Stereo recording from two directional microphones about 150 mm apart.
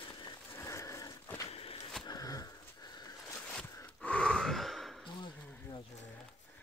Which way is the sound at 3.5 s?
5° left (ahead or behind).